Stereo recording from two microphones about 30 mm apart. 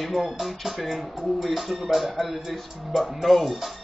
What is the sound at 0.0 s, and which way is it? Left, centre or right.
Speech, centre.